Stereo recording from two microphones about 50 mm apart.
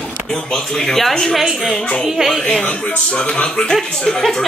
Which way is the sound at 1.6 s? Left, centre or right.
Centre.